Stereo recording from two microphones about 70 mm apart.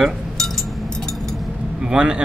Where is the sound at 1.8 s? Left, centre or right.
Centre.